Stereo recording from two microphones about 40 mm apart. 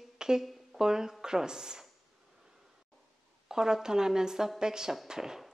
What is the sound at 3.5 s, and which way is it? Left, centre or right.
A woman's voice, centre.